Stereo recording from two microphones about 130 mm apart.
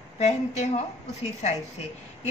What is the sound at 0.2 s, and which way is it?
A woman's voice, 60° left (ahead or behind).